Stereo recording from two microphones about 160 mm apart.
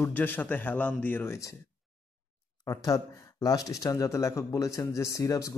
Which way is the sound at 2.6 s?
20° left (ahead or behind).